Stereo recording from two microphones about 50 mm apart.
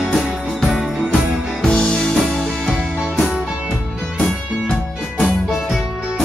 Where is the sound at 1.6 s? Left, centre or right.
Centre.